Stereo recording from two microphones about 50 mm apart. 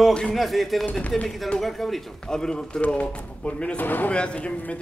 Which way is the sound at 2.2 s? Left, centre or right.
Centre.